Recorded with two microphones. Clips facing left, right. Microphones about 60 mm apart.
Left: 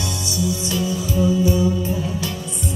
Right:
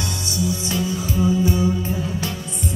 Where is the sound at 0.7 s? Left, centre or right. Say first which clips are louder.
Left 1 dB; right.